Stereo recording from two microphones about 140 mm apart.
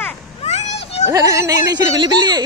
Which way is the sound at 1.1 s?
25° right (ahead or behind).